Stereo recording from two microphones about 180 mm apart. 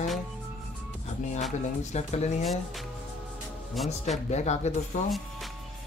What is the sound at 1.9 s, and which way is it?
Speech, 40° left (ahead or behind).